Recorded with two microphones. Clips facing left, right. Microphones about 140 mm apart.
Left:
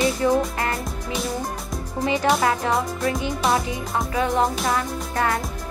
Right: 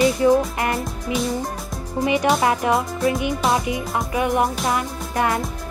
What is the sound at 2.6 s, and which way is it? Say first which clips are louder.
Music: right 3 dB; 15° right (ahead or behind).